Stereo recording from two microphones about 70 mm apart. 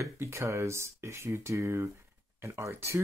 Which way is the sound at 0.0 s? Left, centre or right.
Right.